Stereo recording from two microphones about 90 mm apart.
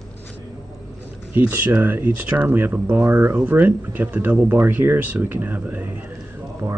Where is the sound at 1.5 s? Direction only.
20° right (ahead or behind).